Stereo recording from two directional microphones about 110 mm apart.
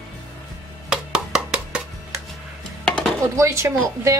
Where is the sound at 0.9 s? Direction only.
5° right (ahead or behind).